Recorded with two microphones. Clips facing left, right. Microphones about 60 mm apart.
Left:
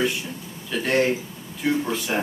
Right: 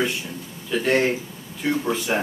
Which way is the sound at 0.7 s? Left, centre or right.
Centre.